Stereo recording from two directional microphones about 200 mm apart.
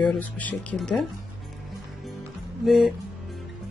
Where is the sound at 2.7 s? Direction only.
5° right (ahead or behind).